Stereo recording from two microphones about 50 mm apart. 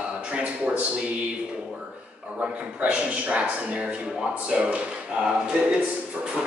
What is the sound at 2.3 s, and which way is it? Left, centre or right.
Speech, right.